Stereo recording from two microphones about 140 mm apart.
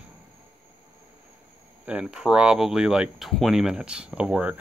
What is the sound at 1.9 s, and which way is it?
Speech, 5° right (ahead or behind).